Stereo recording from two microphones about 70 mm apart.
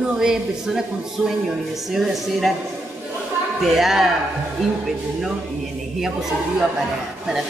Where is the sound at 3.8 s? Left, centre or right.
Centre.